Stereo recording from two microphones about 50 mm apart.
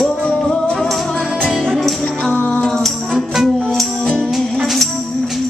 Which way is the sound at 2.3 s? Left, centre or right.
Left.